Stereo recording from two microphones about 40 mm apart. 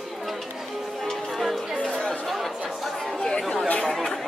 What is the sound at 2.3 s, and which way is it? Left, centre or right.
Chatter, centre.